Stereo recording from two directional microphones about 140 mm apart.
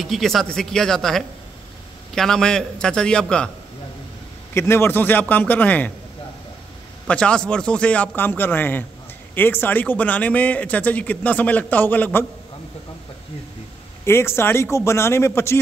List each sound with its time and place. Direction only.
0.0 s a man's voice: centre (ahead or behind)
4.6 s a man's voice: 20° left (ahead or behind)
7.1 s a man's voice: 5° left (ahead or behind)
14.0 s a man's voice: 15° left (ahead or behind)